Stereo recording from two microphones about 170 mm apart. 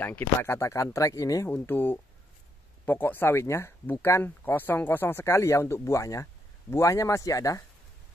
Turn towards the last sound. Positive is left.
turn(degrees=20)  # may be behind; listen again after turning